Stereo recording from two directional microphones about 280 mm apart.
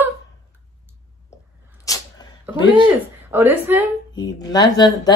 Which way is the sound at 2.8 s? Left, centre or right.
Centre.